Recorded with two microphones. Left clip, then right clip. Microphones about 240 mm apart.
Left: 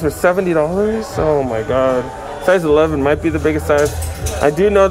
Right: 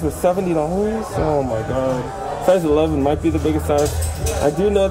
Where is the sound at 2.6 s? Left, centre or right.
Centre.